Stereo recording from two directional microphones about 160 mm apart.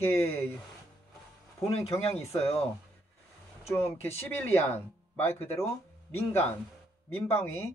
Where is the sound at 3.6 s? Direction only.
15° left (ahead or behind).